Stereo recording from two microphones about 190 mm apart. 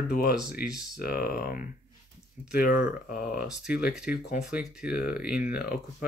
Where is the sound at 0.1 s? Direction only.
50° left (ahead or behind).